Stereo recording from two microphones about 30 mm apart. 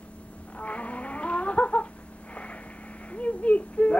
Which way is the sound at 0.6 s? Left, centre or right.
Left.